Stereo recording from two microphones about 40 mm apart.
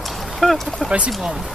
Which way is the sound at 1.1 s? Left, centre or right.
Centre.